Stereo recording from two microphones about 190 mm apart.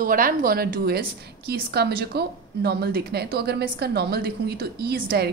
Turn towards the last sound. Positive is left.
turn(degrees=-55)  # may be behind; listen again after turning